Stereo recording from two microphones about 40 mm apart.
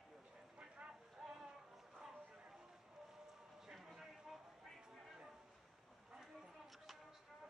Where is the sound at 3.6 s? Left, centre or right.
Centre.